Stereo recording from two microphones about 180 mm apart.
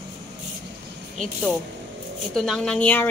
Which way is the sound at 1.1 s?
Centre (ahead or behind).